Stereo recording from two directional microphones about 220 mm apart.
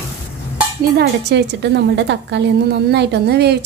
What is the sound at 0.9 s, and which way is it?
A woman's voice, 50° right (ahead or behind).